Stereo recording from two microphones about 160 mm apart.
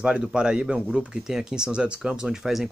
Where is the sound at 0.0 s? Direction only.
5° right (ahead or behind).